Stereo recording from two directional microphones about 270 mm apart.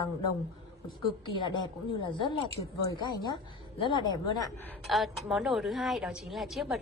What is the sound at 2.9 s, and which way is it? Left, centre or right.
A woman's voice, centre.